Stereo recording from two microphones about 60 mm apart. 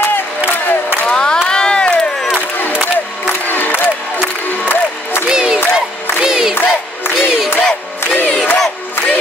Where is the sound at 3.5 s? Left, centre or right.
Left.